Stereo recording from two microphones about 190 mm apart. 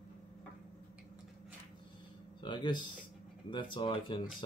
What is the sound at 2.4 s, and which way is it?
Speech, 25° left (ahead or behind).